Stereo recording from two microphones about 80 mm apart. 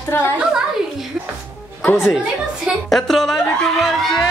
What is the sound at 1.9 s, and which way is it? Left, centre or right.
Speech, centre.